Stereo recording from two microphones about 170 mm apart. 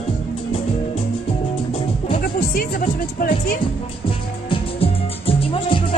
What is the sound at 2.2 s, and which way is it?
Music, 60° left (ahead or behind).